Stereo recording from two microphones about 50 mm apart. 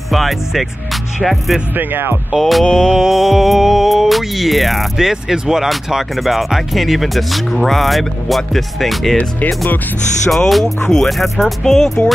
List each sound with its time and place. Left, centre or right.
0.1 s speech: centre
1.8 s speech: right
2.3 s speech: centre
3.0 s speech: centre
10.3 s speech: centre